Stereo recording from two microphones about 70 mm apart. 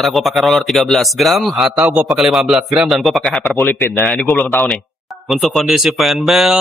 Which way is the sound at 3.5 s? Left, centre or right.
Left.